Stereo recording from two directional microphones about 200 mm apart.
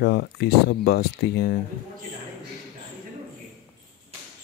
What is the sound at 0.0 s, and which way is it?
Speech, 55° left (ahead or behind).